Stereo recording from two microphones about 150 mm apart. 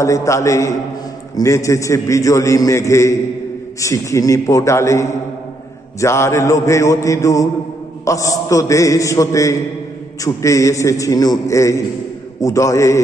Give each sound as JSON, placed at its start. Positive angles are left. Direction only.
{"t": 0.0, "sound": "a man's voice", "side_deg": 20}